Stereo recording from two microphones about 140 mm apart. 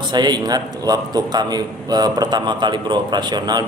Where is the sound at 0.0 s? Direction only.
30° right (ahead or behind).